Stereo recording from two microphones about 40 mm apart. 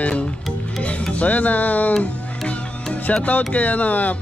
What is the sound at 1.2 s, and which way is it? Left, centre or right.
Speech, left.